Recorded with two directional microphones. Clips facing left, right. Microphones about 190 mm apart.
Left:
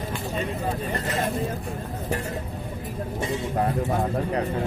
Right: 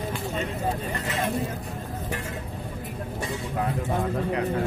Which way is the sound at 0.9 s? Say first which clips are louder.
Left 3 dB; 35° left (ahead or behind).